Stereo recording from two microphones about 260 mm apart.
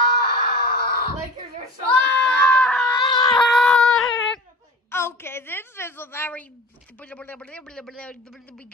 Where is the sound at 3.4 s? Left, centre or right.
Centre.